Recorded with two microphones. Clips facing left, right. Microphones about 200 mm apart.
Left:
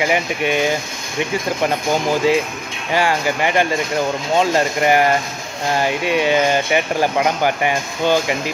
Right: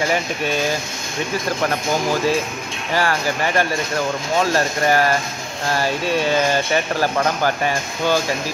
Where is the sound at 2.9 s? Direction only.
15° left (ahead or behind).